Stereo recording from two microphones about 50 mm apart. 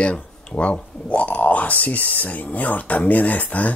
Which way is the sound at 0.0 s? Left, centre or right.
Left.